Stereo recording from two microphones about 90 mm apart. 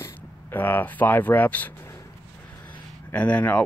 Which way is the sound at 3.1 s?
15° left (ahead or behind).